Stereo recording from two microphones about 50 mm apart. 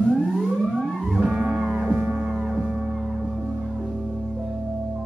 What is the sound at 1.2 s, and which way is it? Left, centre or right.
Music, centre.